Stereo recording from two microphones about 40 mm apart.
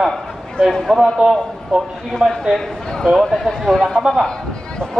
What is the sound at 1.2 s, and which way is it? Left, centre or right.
Speech, right.